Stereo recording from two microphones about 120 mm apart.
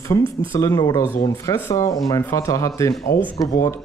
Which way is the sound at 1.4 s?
25° left (ahead or behind).